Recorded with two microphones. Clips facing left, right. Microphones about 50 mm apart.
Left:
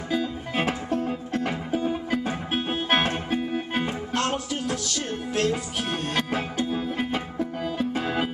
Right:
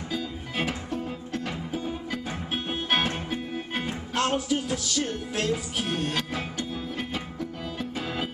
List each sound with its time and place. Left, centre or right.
1.3 s music: left
4.1 s music: centre
6.3 s music: left